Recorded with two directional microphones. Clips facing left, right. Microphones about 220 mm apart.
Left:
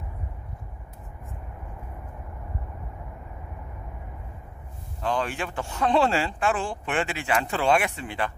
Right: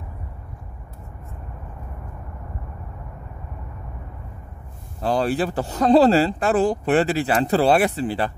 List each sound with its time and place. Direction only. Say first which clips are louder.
5.0 s speech: right 7 dB; 35° right (ahead or behind)